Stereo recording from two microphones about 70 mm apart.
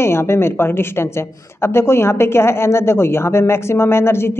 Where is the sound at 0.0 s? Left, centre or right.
Left.